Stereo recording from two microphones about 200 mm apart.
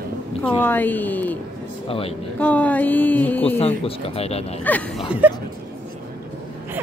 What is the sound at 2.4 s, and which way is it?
Speech, 5° left (ahead or behind).